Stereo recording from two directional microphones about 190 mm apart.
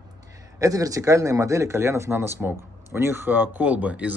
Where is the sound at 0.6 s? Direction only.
20° right (ahead or behind).